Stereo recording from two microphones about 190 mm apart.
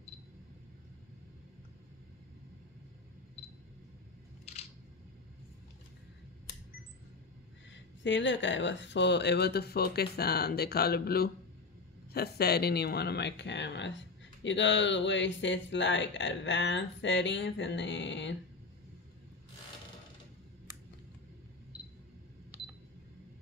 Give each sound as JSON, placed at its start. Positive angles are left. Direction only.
{"t": 7.7, "sound": "speech", "side_deg": 70}